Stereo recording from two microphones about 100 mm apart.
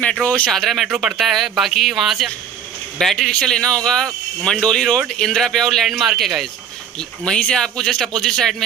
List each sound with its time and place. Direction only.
0.0 s speech: 10° left (ahead or behind)
0.8 s speech: 15° right (ahead or behind)
1.1 s speech: centre (ahead or behind)